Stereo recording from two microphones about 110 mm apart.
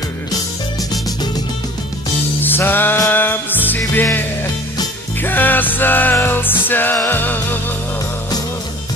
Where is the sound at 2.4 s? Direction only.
20° left (ahead or behind).